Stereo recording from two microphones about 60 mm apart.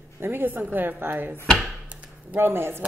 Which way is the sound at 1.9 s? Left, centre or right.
Right.